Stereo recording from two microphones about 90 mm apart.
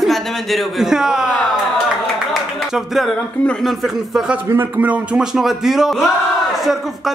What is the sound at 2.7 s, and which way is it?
A man's voice, centre (ahead or behind).